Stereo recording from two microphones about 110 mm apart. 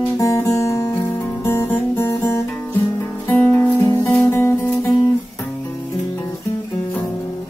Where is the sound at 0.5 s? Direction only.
30° left (ahead or behind).